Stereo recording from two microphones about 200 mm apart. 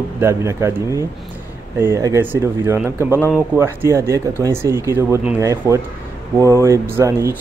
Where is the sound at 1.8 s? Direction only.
15° right (ahead or behind).